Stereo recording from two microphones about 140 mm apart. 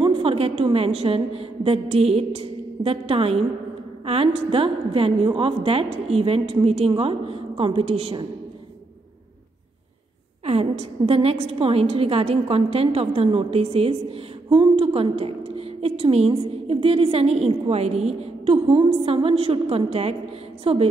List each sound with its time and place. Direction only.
0.0 s a woman's voice: 40° right (ahead or behind)
10.4 s a woman's voice: 45° right (ahead or behind)